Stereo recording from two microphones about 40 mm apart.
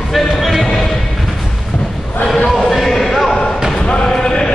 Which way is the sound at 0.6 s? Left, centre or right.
Centre.